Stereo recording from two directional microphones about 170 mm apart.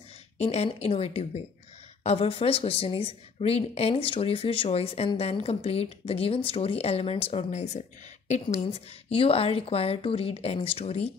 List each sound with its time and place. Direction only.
0.4 s speech: 40° left (ahead or behind)